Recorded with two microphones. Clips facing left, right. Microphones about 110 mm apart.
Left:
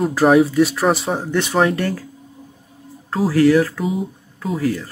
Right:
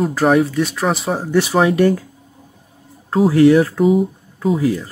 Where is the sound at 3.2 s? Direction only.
25° right (ahead or behind).